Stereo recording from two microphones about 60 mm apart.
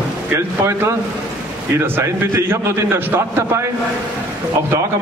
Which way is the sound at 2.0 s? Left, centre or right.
Right.